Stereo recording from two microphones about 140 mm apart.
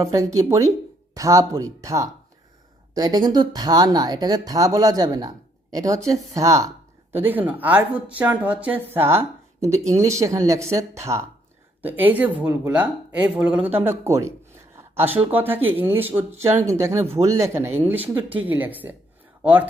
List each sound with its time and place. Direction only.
0.0 s speech: 20° right (ahead or behind)